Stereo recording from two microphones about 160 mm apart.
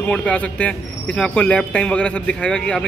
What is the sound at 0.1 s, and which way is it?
Speech, 5° left (ahead or behind).